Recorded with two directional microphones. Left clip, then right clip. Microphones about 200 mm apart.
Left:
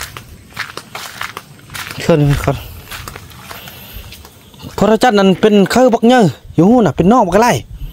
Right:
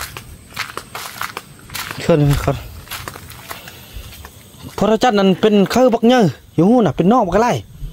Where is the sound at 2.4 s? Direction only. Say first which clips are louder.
Left 3 dB; 15° left (ahead or behind).